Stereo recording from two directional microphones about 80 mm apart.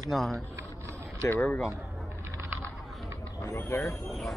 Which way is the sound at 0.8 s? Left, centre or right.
Right.